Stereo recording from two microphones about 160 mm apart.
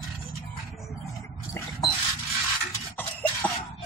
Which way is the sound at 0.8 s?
20° left (ahead or behind).